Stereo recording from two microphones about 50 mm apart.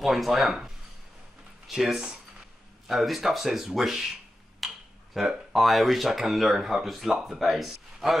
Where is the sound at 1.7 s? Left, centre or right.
Centre.